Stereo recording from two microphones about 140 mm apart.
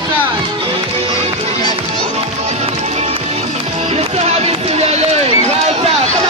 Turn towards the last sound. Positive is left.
turn(degrees=-50)  # may be behind; listen again after turning